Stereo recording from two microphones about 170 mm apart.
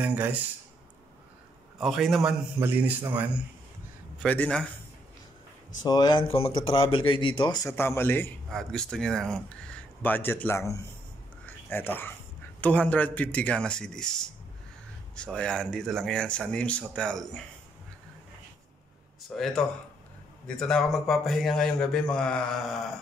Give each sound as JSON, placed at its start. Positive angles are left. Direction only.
{"t": 0.0, "sound": "a man's voice", "side_deg": -10}
{"t": 1.8, "sound": "a man's voice", "side_deg": 0}
{"t": 2.6, "sound": "a man's voice", "side_deg": -10}
{"t": 4.2, "sound": "a man's voice", "side_deg": 5}
{"t": 5.9, "sound": "speech", "side_deg": 25}
{"t": 11.4, "sound": "a sound", "side_deg": 10}
{"t": 12.5, "sound": "a man's voice", "side_deg": 10}
{"t": 19.3, "sound": "a man's voice", "side_deg": 0}